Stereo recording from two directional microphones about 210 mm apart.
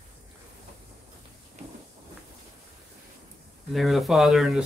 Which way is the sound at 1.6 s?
30° right (ahead or behind).